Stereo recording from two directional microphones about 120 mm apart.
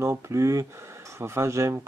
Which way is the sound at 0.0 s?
25° right (ahead or behind).